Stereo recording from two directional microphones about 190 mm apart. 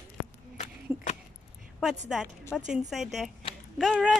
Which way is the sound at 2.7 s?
Centre (ahead or behind).